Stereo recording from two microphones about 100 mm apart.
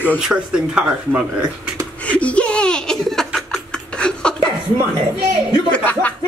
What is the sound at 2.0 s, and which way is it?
Laughter, 10° left (ahead or behind).